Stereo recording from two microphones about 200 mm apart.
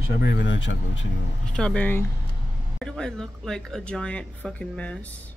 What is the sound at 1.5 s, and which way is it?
Speech, 5° left (ahead or behind).